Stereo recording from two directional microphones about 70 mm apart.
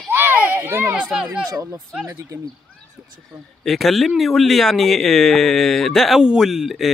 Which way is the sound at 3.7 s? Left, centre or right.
Centre.